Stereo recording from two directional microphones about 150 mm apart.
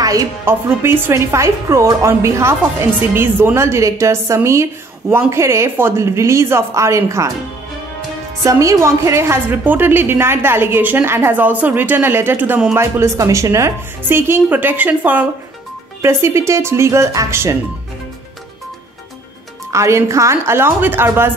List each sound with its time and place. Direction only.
0.0 s a woman's voice: 20° right (ahead or behind)
8.5 s a woman's voice: 20° right (ahead or behind)
19.7 s a woman's voice: 20° right (ahead or behind)